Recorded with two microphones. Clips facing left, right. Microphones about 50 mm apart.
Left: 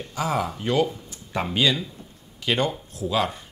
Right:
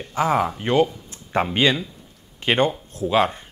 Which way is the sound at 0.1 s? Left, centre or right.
Right.